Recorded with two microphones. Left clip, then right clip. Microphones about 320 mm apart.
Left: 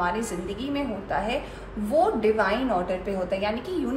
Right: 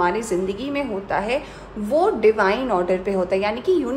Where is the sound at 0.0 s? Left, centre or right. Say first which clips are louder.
Right 7 dB; right.